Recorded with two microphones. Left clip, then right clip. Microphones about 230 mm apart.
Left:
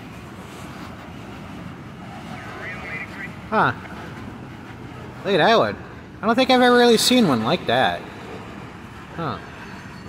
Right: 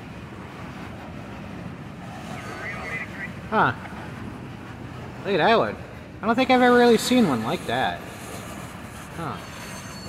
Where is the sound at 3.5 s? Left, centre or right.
Centre.